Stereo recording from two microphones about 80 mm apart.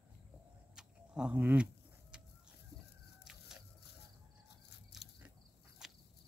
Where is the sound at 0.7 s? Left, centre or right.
Centre.